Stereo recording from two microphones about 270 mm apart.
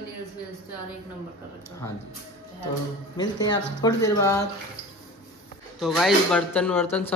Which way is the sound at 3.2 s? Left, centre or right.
Centre.